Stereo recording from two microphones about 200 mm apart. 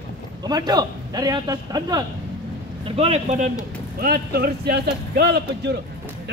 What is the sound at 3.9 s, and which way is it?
A man's voice, 50° right (ahead or behind).